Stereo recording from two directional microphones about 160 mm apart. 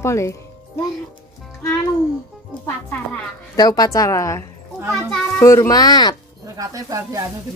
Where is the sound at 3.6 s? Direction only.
25° left (ahead or behind).